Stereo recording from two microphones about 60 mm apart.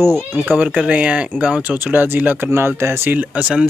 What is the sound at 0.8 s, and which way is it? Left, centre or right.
Speech, centre.